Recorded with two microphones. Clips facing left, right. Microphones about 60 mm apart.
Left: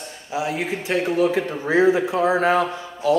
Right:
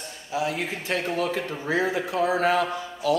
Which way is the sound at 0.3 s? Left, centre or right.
Left.